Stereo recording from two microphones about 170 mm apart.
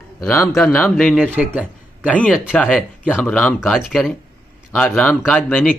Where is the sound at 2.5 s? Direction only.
10° left (ahead or behind).